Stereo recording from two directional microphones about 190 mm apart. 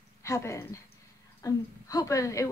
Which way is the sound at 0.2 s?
15° left (ahead or behind).